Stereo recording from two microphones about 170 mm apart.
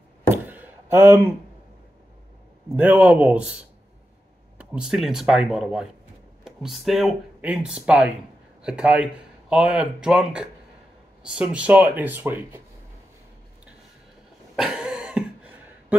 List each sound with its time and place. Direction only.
0.3 s a sound: 10° right (ahead or behind)
2.7 s speech: 10° right (ahead or behind)
4.6 s speech: 5° right (ahead or behind)
14.5 s cough: 5° right (ahead or behind)